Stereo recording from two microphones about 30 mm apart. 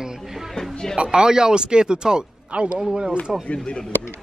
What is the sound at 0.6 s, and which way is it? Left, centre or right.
Music, left.